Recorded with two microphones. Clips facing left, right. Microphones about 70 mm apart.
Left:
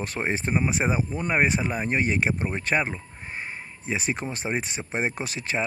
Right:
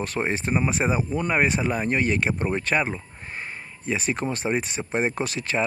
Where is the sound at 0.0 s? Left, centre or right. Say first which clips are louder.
Right 2 dB; left.